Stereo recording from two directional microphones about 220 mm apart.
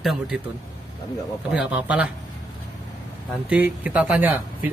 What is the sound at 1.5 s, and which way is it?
Speech, 5° right (ahead or behind).